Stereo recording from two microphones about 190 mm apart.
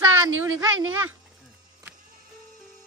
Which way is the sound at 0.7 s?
90° right.